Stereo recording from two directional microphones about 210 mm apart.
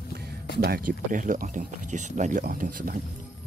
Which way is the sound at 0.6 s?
45° right (ahead or behind).